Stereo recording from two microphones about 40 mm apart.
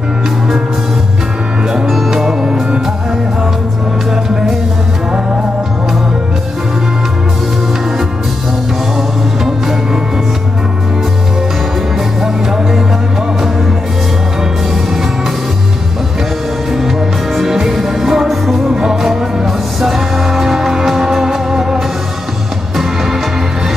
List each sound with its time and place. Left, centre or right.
1.7 s music: centre
12.2 s music: centre
17.4 s music: centre